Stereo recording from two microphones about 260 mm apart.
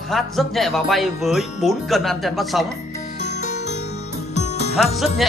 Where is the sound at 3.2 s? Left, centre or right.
Left.